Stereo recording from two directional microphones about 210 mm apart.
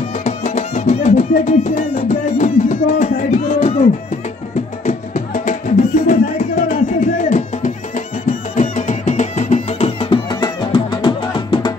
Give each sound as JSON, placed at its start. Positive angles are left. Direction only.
{"t": 0.2, "sound": "music", "side_deg": 35}
{"t": 4.8, "sound": "music", "side_deg": 35}